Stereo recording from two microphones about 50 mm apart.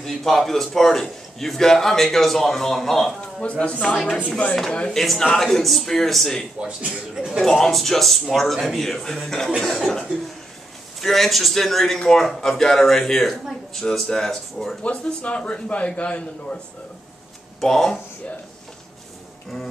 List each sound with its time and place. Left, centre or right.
0.0 s a man's voice: centre
3.3 s a man's voice: left
4.9 s speech: centre
6.8 s a man's voice: right
7.4 s a man's voice: centre
14.8 s a man's voice: left
17.6 s a man's voice: centre